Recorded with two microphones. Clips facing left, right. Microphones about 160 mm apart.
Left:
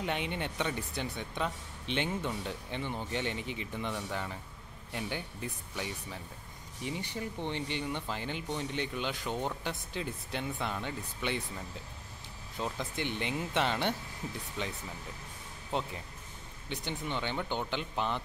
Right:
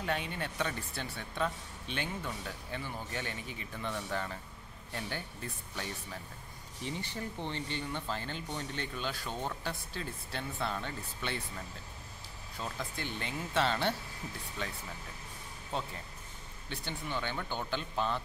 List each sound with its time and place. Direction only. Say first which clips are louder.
0.0 s speech: left 1 dB; 20° left (ahead or behind)
12.5 s speech: left 4 dB; 20° left (ahead or behind)